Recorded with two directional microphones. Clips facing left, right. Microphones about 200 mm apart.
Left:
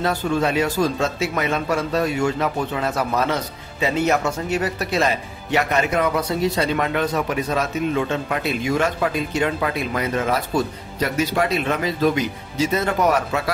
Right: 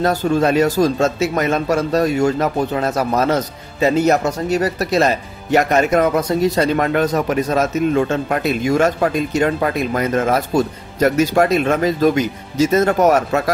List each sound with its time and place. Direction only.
0.0 s speech: 40° right (ahead or behind)